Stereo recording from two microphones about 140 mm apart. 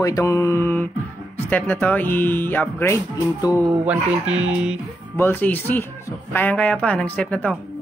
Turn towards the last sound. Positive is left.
turn(degrees=10)  # may be behind; listen again after turning